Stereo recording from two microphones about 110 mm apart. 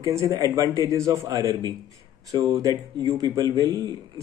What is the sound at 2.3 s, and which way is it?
Speech, 45° right (ahead or behind).